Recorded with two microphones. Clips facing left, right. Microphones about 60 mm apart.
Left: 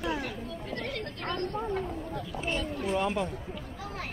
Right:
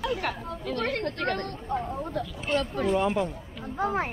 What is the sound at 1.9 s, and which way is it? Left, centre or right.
Speech, right.